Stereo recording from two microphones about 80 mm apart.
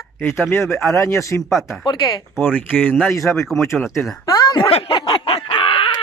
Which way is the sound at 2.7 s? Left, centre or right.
Left.